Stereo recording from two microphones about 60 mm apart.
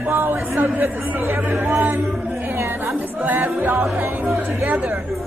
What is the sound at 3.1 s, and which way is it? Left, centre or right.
A capella, right.